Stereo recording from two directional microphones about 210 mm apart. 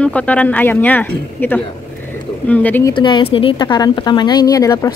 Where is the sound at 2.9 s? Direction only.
20° left (ahead or behind).